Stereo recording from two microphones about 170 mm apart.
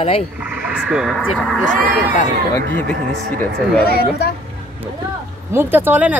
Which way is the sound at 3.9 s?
65° left (ahead or behind).